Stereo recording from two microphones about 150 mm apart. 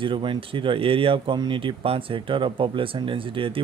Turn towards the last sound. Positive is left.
turn(degrees=-35)  # may be behind; listen again after turning